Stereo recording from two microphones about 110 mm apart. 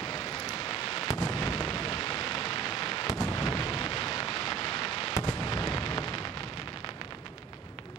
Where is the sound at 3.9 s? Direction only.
40° left (ahead or behind).